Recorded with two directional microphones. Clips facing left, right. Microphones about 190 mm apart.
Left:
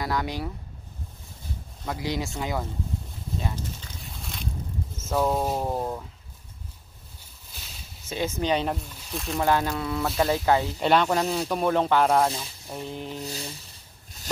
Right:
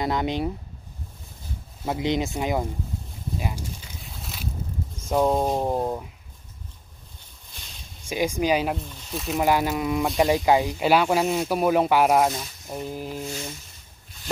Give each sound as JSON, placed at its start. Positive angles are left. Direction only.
{"t": 0.0, "sound": "speech", "side_deg": -20}
{"t": 1.9, "sound": "speech", "side_deg": -20}
{"t": 4.0, "sound": "boat", "side_deg": 0}
{"t": 5.1, "sound": "speech", "side_deg": -15}
{"t": 7.5, "sound": "a sound", "side_deg": 5}
{"t": 8.1, "sound": "speech", "side_deg": -10}
{"t": 9.4, "sound": "speech", "side_deg": -15}
{"t": 13.2, "sound": "a sound", "side_deg": 35}